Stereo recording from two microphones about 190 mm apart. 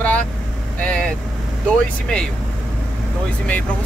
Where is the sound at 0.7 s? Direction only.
5° left (ahead or behind).